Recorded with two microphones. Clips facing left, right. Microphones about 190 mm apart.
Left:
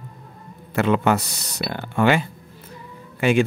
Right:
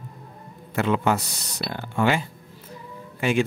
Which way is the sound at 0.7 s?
70° left (ahead or behind).